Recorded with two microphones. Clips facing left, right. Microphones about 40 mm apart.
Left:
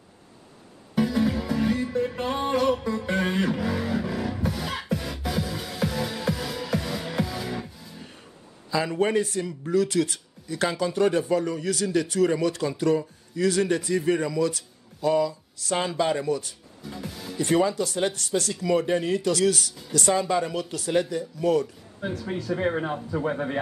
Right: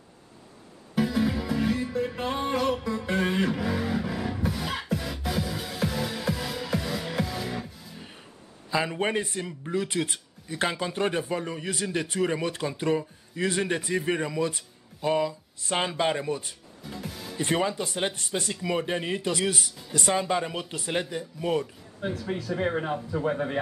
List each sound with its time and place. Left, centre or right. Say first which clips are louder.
0.9 s music: left 2 dB; centre
8.6 s a man's voice: left 3 dB; right
16.8 s music: left 1 dB; centre
17.4 s a man's voice: left 4 dB; right
22.2 s speech: left 3 dB; centre